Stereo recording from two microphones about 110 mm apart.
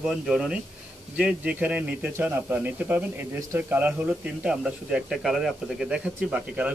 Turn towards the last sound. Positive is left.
turn(degrees=-15)  # may be behind; listen again after turning